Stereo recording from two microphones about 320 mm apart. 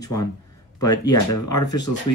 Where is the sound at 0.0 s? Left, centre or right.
Centre.